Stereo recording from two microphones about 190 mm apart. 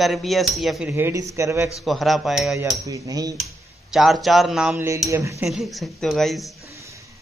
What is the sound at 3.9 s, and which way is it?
Speech, centre (ahead or behind).